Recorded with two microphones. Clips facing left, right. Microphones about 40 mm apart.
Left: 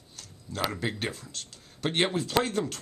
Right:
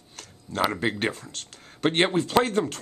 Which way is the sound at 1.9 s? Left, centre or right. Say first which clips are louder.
Right 4 dB; centre.